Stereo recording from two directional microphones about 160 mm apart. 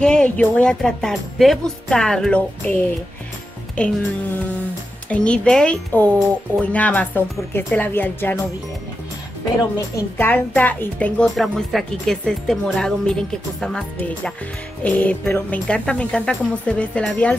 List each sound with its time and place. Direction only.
0.0 s speech: 5° left (ahead or behind)
5.1 s speech: 5° left (ahead or behind)
9.6 s speech: 20° left (ahead or behind)